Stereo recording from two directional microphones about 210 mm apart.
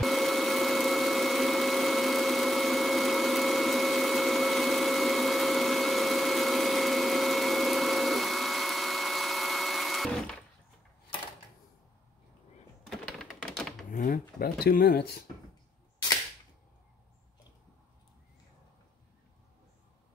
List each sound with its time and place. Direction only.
0.0 s a sound: centre (ahead or behind)
12.9 s typewriter: centre (ahead or behind)
13.9 s speech: 45° left (ahead or behind)